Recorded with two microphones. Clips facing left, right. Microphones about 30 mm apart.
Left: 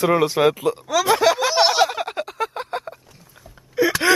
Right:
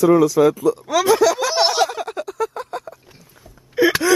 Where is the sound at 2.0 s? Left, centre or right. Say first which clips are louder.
Right 1 dB; left.